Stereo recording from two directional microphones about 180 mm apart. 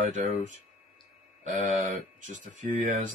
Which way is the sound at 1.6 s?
45° right (ahead or behind).